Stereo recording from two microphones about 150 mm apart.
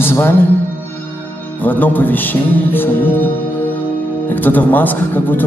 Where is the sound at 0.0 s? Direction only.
15° left (ahead or behind).